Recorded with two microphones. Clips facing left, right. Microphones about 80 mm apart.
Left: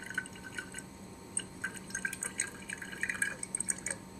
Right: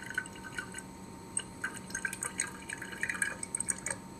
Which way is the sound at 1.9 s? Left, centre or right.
Centre.